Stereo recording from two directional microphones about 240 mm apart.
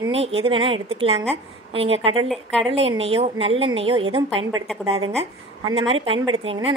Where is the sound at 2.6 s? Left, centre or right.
Right.